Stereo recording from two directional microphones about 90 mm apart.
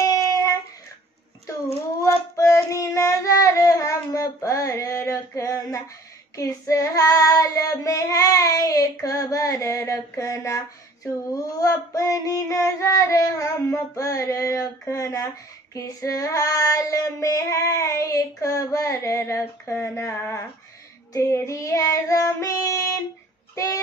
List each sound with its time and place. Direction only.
2.3 s child singing: 40° left (ahead or behind)
19.9 s a sound: 30° left (ahead or behind)
21.1 s child singing: 30° left (ahead or behind)
23.5 s speech: 35° left (ahead or behind)